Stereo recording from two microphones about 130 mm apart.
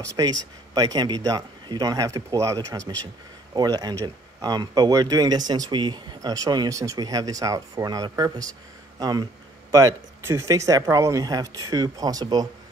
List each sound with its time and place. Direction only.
0.1 s speech: 30° right (ahead or behind)